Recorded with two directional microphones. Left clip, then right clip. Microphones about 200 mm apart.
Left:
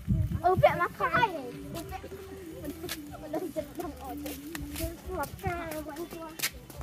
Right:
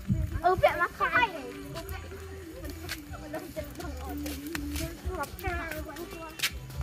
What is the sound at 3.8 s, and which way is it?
Speech, 5° left (ahead or behind).